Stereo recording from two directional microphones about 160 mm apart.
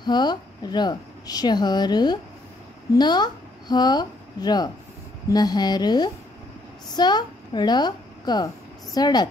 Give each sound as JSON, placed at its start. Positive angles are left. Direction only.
{"t": 0.0, "sound": "a woman's voice", "side_deg": 25}